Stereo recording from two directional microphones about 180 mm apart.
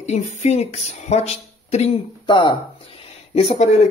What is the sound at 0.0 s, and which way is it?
Speech, 40° left (ahead or behind).